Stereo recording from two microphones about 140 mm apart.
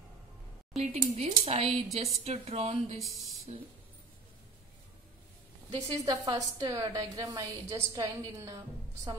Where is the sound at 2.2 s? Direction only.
45° right (ahead or behind).